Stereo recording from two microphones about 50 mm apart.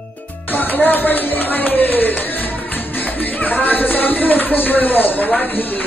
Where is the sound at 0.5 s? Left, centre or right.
Left.